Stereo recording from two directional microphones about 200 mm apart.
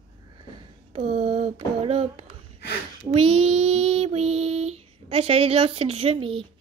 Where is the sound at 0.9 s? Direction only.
30° right (ahead or behind).